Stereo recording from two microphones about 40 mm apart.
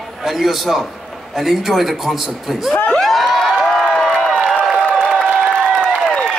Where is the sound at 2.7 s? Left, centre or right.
Left.